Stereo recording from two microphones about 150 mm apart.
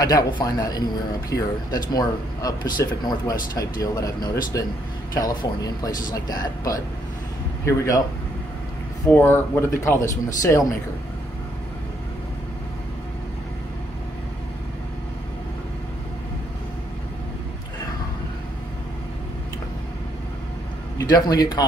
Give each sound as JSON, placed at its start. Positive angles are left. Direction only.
{"t": 0.0, "sound": "speech", "side_deg": 25}
{"t": 9.1, "sound": "speech", "side_deg": 15}
{"t": 21.0, "sound": "speech", "side_deg": 25}